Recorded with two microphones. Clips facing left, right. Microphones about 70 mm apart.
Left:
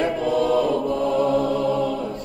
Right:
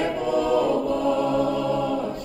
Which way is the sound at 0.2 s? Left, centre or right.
Centre.